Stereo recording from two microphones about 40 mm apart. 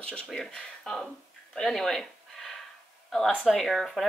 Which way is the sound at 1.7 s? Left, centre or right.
Centre.